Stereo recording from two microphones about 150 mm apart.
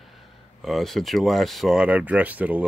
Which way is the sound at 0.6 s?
Centre (ahead or behind).